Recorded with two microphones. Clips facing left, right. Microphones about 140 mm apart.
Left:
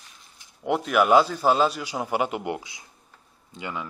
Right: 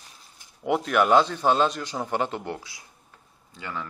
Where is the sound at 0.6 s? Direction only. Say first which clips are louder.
Left 1 dB; centre (ahead or behind).